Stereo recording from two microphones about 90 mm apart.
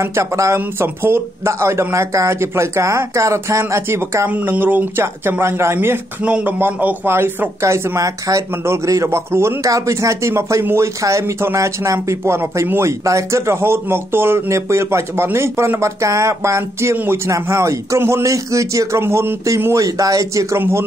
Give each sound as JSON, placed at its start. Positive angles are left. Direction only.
{"t": 0.0, "sound": "speech", "side_deg": -30}
{"t": 4.3, "sound": "speech", "side_deg": -20}
{"t": 16.9, "sound": "speech", "side_deg": -20}
{"t": 17.3, "sound": "speech", "side_deg": -35}